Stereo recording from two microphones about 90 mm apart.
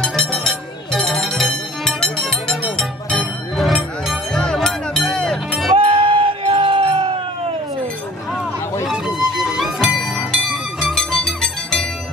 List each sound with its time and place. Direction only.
0.0 s music: 5° left (ahead or behind)
5.8 s music: 90° right
8.8 s music: 5° right (ahead or behind)